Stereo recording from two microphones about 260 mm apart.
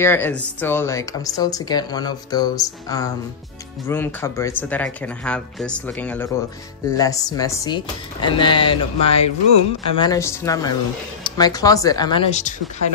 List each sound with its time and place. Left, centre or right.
0.0 s speech: centre; by 12.5 s left